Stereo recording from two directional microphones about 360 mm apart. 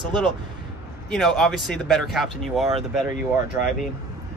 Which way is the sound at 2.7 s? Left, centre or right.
Centre.